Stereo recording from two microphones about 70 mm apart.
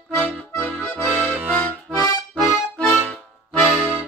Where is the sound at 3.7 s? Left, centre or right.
Centre.